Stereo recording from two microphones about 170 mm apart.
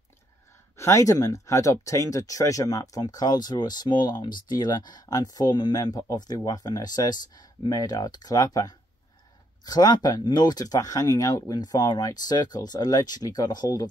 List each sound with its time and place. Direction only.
0.7 s speech: 15° left (ahead or behind)